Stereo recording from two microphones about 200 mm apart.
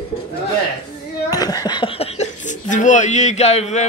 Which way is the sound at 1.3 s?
20° left (ahead or behind).